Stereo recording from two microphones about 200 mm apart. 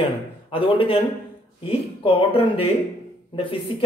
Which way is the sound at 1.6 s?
25° left (ahead or behind).